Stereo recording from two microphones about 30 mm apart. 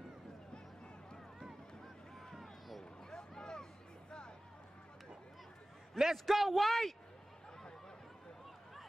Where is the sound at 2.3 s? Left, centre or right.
Centre.